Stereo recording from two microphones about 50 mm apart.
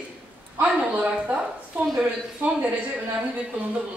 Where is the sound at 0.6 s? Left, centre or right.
Right.